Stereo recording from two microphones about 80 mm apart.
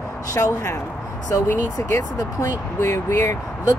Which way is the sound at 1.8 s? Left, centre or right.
Left.